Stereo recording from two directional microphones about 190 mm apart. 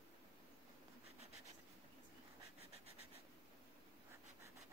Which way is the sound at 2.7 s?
30° right (ahead or behind).